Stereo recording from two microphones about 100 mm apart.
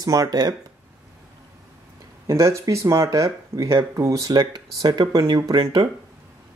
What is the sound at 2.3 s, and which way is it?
Speech, 30° right (ahead or behind).